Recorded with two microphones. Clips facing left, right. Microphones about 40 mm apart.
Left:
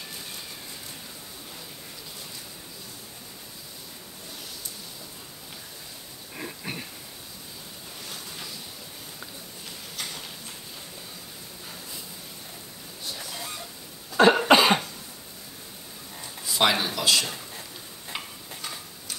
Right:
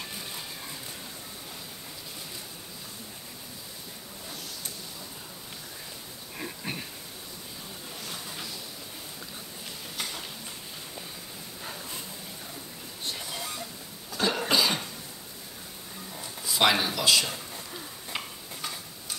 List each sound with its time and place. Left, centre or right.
6.3 s a sound: centre
14.1 s cough: left
16.4 s speech: centre
18.1 s tick-tock: centre